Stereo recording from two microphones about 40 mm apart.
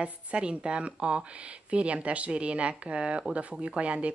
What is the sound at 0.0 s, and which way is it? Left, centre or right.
A woman's voice, right.